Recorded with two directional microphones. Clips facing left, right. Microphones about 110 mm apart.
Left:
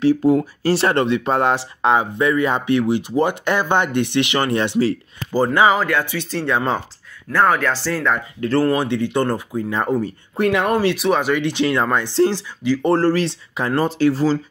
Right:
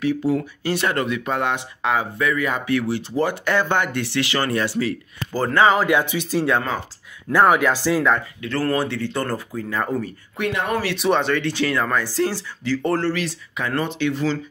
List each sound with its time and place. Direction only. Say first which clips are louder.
0.2 s speech: left 6 dB; 40° left (ahead or behind)
5.3 s speech: left 2 dB; 15° left (ahead or behind)
5.9 s speech: right 2 dB; 15° right (ahead or behind)
8.4 s speech: left 7 dB; 35° left (ahead or behind)
8.6 s speech: left 3 dB; 20° left (ahead or behind)
10.4 s speech: left 6 dB; 35° left (ahead or behind)
11.0 s speech: left 2 dB; 5° left (ahead or behind)
13.0 s speech: left 6 dB; 35° left (ahead or behind)